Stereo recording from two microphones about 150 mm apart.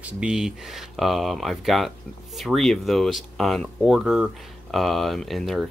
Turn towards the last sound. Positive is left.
turn(degrees=0)  # may be behind; listen again after turning